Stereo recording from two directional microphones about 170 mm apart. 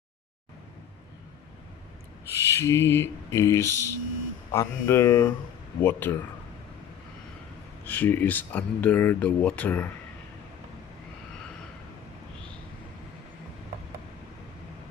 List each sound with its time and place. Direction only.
2.3 s speech: 15° left (ahead or behind)
7.8 s speech: 10° left (ahead or behind)